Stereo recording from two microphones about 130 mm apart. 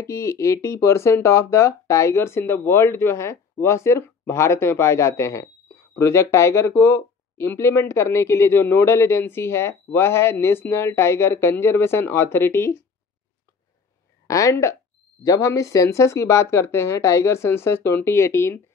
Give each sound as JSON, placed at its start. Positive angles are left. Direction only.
{"t": 0.0, "sound": "speech", "side_deg": 25}
{"t": 14.2, "sound": "speech", "side_deg": 25}